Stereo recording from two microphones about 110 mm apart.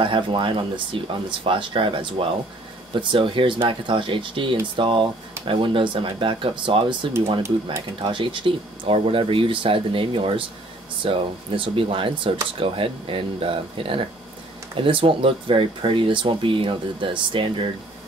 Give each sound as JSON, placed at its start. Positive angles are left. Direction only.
{"t": 0.0, "sound": "speech", "side_deg": -50}